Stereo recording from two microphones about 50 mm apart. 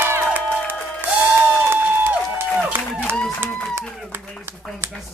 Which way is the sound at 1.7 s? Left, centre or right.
Right.